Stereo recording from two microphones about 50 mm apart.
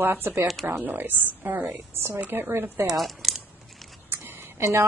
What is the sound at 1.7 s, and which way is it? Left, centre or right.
A woman's voice, right.